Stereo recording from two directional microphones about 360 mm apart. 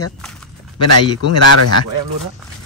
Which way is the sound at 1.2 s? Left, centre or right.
Left.